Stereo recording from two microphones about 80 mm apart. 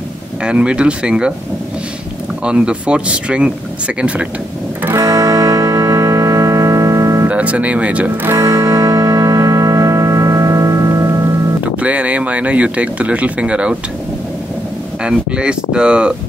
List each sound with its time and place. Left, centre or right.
0.4 s speech: centre
2.4 s speech: centre
4.9 s music: right
7.2 s speech: centre
8.3 s music: right
11.8 s speech: centre
15.0 s speech: centre